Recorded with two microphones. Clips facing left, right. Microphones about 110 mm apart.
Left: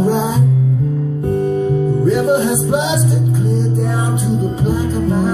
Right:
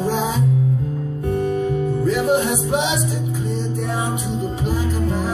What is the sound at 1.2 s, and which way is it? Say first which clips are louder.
Music: left 4 dB; 30° left (ahead or behind).